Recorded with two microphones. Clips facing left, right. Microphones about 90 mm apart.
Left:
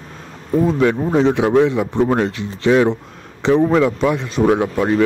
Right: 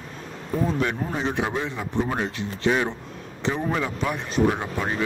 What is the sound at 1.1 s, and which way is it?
Speech, 90° left.